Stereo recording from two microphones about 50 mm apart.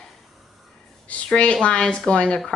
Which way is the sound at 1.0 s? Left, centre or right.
Left.